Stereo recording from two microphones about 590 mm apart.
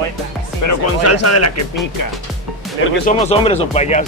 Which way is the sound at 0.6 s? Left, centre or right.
Left.